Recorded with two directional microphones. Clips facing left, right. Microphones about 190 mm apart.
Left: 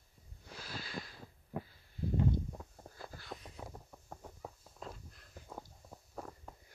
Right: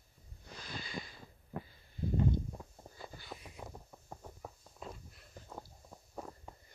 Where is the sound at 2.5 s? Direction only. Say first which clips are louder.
Even; centre (ahead or behind).